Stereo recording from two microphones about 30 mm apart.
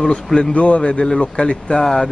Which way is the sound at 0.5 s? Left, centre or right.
Left.